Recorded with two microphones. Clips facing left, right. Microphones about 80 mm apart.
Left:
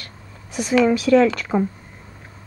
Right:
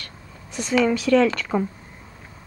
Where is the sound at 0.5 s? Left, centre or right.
Centre.